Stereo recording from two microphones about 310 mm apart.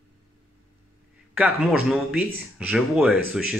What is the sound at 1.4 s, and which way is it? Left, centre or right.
Speech, centre.